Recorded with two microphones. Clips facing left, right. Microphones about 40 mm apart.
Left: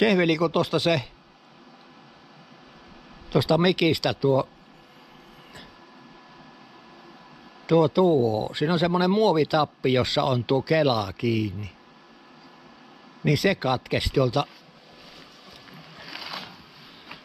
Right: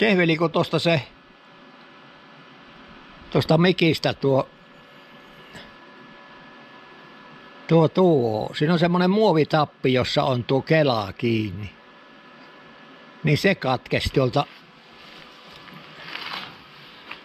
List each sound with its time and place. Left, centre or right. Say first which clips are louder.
0.0 s speech: right 2 dB; centre
3.3 s a man's voice: right 2 dB; centre
7.7 s a man's voice: right 2 dB; centre
13.3 s a man's voice: right 2 dB; centre
15.7 s a sound: right 4 dB; right